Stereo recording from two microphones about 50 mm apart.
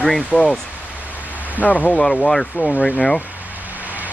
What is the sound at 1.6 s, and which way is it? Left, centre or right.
Speech, left.